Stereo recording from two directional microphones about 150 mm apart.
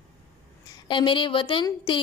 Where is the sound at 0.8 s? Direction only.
35° left (ahead or behind).